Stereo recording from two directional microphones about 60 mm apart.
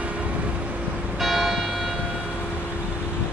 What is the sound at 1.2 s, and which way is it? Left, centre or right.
Church bell, centre.